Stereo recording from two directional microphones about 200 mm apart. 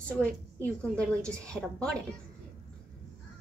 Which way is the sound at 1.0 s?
5° left (ahead or behind).